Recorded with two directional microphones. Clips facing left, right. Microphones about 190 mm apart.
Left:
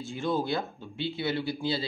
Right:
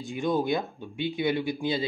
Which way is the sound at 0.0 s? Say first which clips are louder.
Right 3 dB; 15° right (ahead or behind).